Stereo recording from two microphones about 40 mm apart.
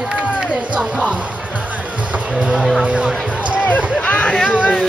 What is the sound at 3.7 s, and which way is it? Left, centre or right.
Music, left.